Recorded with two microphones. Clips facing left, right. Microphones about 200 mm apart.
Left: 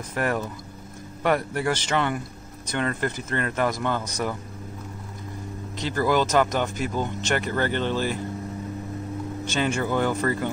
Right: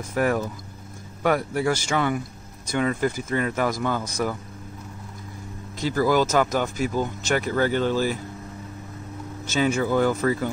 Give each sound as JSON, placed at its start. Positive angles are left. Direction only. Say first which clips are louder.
{"t": 0.1, "sound": "speech", "louder": "right 3 dB", "side_deg": -5}
{"t": 5.8, "sound": "speech", "louder": "right 2 dB", "side_deg": -10}
{"t": 9.4, "sound": "speech", "louder": "right 3 dB", "side_deg": -5}